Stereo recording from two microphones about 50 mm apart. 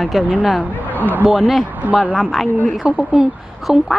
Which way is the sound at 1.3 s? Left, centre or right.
Centre.